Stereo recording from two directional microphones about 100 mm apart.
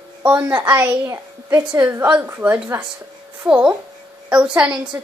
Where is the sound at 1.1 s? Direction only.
30° right (ahead or behind).